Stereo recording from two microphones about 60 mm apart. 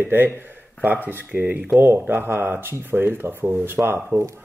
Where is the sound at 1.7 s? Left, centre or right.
Right.